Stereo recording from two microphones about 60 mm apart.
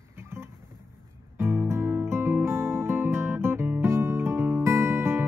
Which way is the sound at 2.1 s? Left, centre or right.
Right.